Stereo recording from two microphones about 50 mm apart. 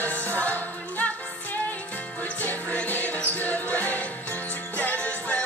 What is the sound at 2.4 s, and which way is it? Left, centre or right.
Music, left.